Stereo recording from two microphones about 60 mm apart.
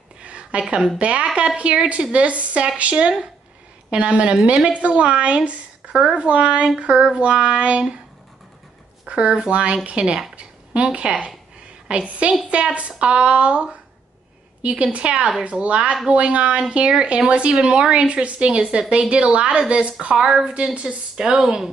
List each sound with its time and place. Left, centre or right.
0.2 s a woman's voice: centre
9.0 s a woman's voice: centre